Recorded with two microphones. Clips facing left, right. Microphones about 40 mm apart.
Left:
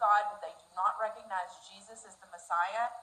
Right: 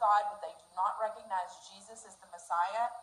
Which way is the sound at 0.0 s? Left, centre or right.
Centre.